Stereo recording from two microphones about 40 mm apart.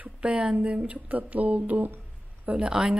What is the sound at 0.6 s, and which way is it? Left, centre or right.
Speech, right.